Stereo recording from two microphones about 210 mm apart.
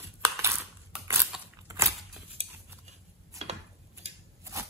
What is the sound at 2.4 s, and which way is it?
Cutlery, 30° right (ahead or behind).